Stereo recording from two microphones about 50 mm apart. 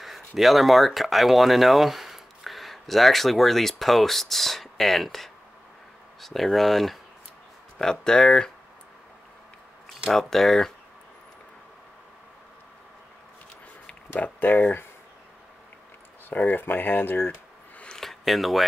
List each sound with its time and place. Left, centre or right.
0.0 s speech: centre
7.8 s speech: centre
10.1 s speech: centre
14.2 s speech: left
16.3 s speech: left
17.8 s a sound: centre
18.2 s speech: centre